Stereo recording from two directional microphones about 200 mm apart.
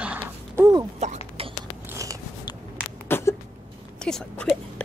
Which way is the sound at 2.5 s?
20° left (ahead or behind).